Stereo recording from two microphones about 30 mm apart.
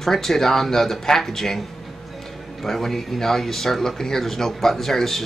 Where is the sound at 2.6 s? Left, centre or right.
Centre.